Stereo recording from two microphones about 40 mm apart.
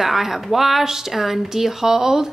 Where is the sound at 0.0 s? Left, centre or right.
Centre.